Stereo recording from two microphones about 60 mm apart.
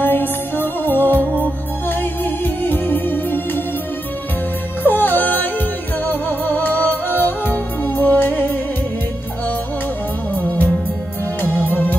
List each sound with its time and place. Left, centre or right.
0.0 s music: left
4.8 s music: left
10.3 s music: left